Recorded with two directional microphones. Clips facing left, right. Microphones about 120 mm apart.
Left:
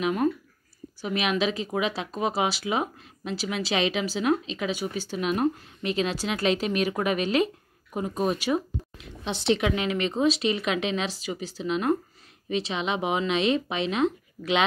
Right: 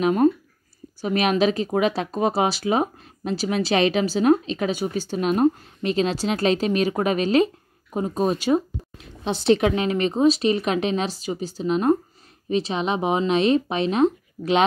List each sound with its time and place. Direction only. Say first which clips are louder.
0.0 s a woman's voice: right 6 dB; 40° right (ahead or behind)
4.7 s a woman's voice: right 5 dB; 30° right (ahead or behind)
9.2 s a woman's voice: right 6 dB; 40° right (ahead or behind)